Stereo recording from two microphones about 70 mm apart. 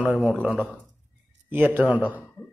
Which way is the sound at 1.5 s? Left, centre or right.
Right.